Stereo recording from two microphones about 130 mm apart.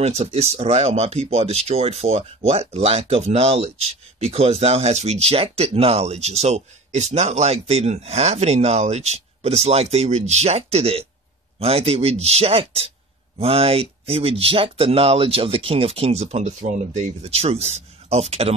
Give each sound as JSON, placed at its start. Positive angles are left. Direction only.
{"t": 0.0, "sound": "speech", "side_deg": -55}